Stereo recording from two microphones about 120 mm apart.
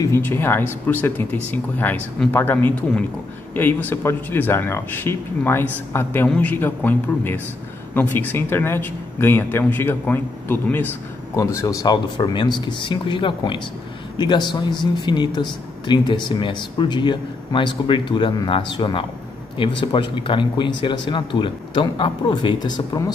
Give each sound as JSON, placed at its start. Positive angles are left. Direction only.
{"t": 0.0, "sound": "speech", "side_deg": 20}